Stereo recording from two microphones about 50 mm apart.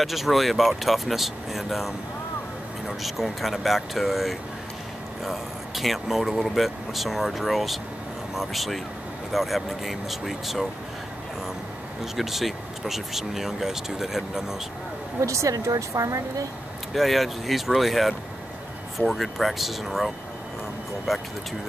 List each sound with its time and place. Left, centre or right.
0.0 s speech: centre
3.0 s speech: centre
12.0 s speech: centre
15.2 s speech: right
16.9 s speech: centre
21.1 s speech: centre